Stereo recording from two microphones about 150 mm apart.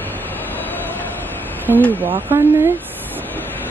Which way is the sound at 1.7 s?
15° right (ahead or behind).